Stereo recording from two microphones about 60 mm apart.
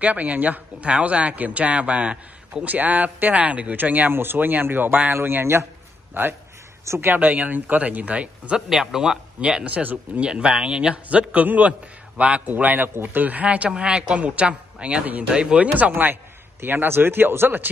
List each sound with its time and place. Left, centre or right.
0.0 s speech: right
8.6 s speech: centre
9.4 s speech: centre
10.3 s speech: centre
15.9 s speech: right